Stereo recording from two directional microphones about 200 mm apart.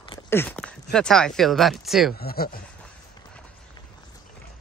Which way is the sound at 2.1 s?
50° left (ahead or behind).